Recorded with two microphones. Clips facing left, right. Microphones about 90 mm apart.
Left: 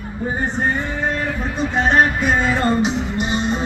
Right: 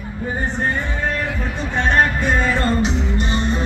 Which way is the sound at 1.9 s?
15° left (ahead or behind).